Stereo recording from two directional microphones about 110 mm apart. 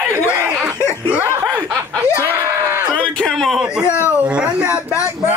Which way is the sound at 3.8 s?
25° left (ahead or behind).